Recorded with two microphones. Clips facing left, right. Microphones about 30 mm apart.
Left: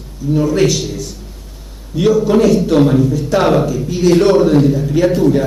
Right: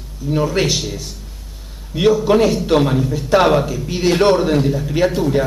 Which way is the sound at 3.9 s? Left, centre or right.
Right.